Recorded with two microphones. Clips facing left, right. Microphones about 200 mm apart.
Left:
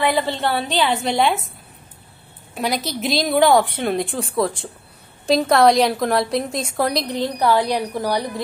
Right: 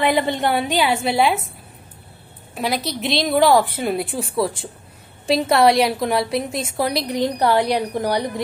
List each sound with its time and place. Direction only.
0.0 s a woman's voice: 20° right (ahead or behind)
2.5 s a woman's voice: centre (ahead or behind)
7.2 s a woman's voice: 15° right (ahead or behind)